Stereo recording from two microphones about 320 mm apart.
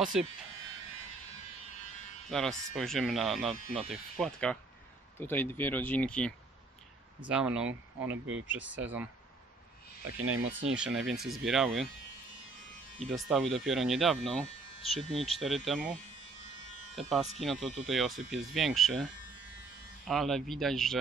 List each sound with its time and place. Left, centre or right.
0.0 s speech: centre
2.2 s speech: centre
8.7 s speech: centre
10.0 s speech: right
10.7 s speech: centre
13.0 s speech: centre
16.9 s speech: centre
20.1 s speech: centre